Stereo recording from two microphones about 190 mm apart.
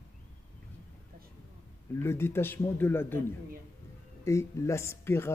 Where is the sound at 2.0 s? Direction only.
15° left (ahead or behind).